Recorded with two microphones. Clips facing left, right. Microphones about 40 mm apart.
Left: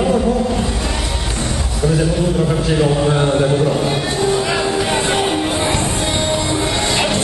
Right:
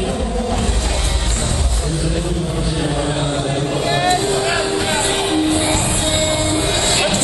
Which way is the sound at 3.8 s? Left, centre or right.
Right.